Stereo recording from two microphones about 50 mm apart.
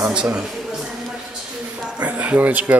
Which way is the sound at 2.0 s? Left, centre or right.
Right.